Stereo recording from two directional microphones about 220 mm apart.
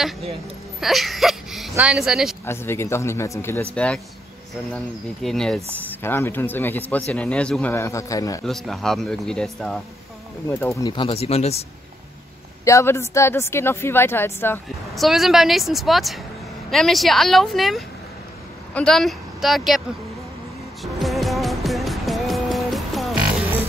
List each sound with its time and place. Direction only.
0.7 s speech: centre (ahead or behind)
2.4 s speech: 10° left (ahead or behind)
8.5 s speech: centre (ahead or behind)
10.8 s speech: 20° left (ahead or behind)
12.6 s speech: 10° left (ahead or behind)
15.0 s speech: centre (ahead or behind)
20.8 s music: centre (ahead or behind)